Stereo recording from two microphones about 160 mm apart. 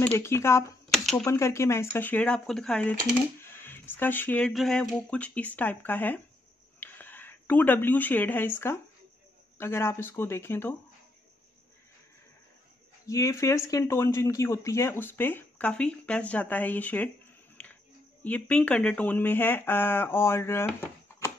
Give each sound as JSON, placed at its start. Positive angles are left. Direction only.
{"t": 0.0, "sound": "speech", "side_deg": 15}
{"t": 0.9, "sound": "a sound", "side_deg": 0}
{"t": 1.2, "sound": "speech", "side_deg": 20}
{"t": 13.0, "sound": "speech", "side_deg": 20}
{"t": 18.2, "sound": "speech", "side_deg": 10}